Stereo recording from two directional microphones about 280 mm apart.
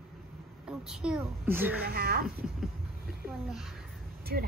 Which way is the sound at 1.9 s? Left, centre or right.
Right.